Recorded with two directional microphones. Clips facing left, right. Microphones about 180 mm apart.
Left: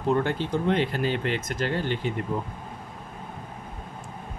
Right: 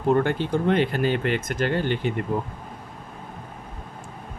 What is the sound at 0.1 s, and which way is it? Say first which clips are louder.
Speech: right 3 dB; 55° right (ahead or behind).